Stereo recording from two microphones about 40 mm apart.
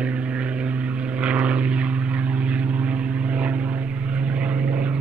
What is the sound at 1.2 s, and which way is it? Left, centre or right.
Vehicle, right.